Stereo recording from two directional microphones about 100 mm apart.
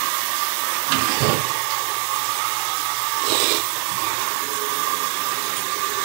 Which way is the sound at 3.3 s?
20° right (ahead or behind).